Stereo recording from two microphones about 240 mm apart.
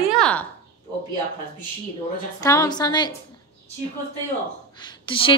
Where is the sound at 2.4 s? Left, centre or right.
Centre.